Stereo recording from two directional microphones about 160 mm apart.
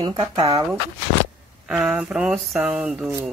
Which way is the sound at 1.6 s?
5° right (ahead or behind).